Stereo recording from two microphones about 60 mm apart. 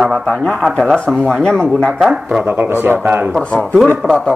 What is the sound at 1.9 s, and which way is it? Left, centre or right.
Speech, centre.